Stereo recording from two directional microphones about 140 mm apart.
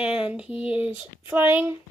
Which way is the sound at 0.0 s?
5° right (ahead or behind).